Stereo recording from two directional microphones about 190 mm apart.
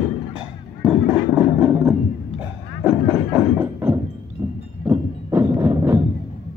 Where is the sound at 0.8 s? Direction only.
10° right (ahead or behind).